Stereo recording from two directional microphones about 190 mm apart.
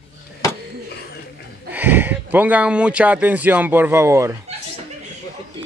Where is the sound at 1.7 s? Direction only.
10° right (ahead or behind).